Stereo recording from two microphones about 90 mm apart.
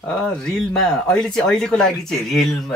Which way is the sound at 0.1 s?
5° left (ahead or behind).